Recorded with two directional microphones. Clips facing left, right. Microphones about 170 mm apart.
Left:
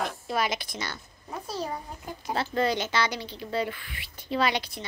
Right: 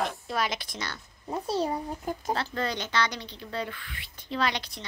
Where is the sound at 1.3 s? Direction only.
25° right (ahead or behind).